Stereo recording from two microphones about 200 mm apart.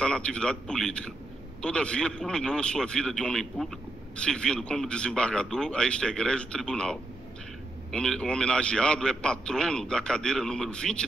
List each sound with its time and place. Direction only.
0.0 s a man's voice: 5° left (ahead or behind)